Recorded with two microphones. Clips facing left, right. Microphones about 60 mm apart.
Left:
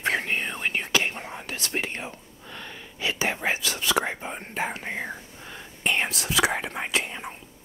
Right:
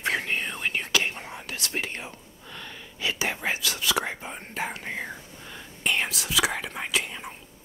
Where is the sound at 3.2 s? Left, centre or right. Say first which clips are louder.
Left 3 dB; left.